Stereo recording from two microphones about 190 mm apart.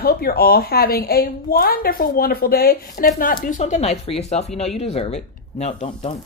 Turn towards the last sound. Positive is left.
turn(degrees=35)  # may be behind; listen again after turning